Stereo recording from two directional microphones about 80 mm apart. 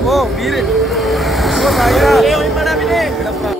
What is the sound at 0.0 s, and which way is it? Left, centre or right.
Vehicle, centre.